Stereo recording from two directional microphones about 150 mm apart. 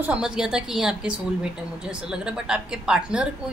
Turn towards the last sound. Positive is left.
turn(degrees=-5)  # may be behind; listen again after turning